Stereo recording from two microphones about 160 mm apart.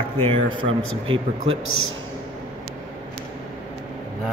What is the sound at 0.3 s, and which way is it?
Speech, 35° right (ahead or behind).